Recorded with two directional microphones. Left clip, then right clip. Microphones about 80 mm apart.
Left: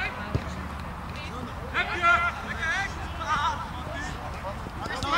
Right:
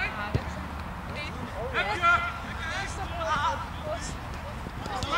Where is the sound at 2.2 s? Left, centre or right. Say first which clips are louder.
Left 5 dB; left.